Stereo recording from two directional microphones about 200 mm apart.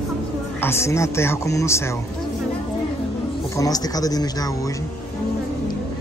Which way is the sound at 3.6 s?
20° left (ahead or behind).